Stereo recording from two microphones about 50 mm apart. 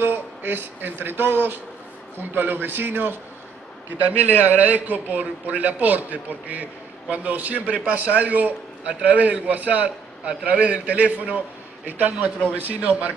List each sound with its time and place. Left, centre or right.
0.0 s speech: right
4.3 s a man's voice: right